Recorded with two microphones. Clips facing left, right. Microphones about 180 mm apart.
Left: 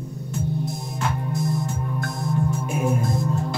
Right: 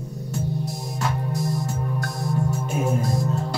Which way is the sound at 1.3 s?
35° right (ahead or behind).